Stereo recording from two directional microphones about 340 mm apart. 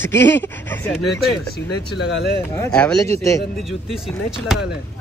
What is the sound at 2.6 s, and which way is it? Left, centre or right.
Speech, centre.